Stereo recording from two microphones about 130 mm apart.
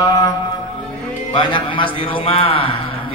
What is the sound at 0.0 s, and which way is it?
Music, 25° left (ahead or behind).